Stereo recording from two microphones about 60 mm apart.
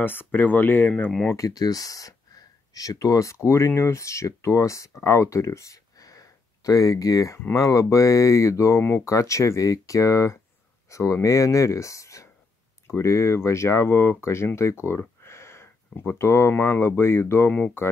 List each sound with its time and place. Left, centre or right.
0.0 s speech: left
1.3 s speech: left
7.5 s speech: left
12.8 s speech: left
15.2 s a sound: left
16.5 s speech: left
17.5 s speech: left